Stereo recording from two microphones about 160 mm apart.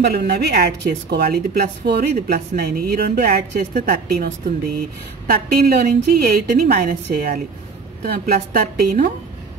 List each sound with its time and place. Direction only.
0.0 s a woman's voice: 80° right; by 4.3 s 60° right (ahead or behind)
5.2 s a woman's voice: 70° right (ahead or behind)
5.9 s a woman's voice: 55° right (ahead or behind)
8.1 s a woman's voice: 70° right (ahead or behind)